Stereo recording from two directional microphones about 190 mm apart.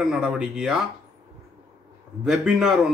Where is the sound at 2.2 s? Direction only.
5° right (ahead or behind).